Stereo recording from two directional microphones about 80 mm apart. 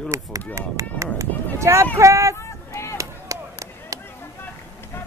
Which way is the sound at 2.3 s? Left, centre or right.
Left.